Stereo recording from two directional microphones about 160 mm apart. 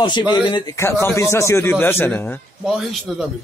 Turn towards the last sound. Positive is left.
turn(degrees=0)  # may be behind; listen again after turning